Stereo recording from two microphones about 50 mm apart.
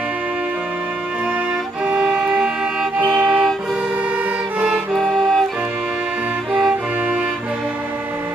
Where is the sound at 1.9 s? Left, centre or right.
Centre.